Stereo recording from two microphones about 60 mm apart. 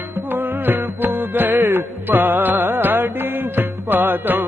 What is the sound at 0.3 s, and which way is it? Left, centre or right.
Music, right.